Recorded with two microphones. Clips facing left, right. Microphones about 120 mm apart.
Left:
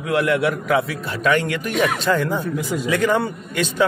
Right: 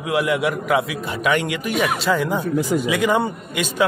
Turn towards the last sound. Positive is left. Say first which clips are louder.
# left 1 dB
turn(degrees=-10)  # may be behind; listen again after turning